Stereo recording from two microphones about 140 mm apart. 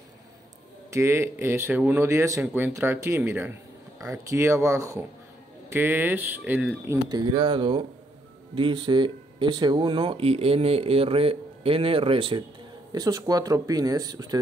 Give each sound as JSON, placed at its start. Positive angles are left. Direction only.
{"t": 0.8, "sound": "speech", "side_deg": -20}
{"t": 6.9, "sound": "speech", "side_deg": -30}
{"t": 12.9, "sound": "speech", "side_deg": -25}